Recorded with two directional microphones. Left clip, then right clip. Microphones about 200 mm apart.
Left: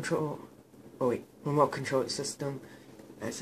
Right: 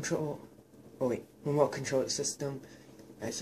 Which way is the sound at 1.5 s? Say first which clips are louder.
Left 2 dB; 20° left (ahead or behind).